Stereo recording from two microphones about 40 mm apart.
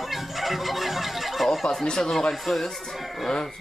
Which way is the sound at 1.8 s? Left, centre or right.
Centre.